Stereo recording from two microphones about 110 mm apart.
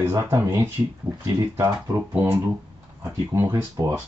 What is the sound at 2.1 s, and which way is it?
Speech, 20° right (ahead or behind).